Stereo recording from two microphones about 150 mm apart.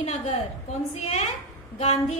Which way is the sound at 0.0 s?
45° left (ahead or behind).